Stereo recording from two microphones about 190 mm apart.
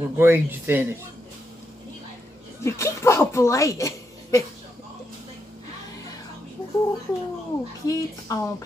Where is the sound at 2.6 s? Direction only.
15° left (ahead or behind).